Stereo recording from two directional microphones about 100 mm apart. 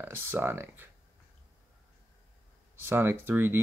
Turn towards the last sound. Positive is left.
turn(degrees=-25)  # may be behind; listen again after turning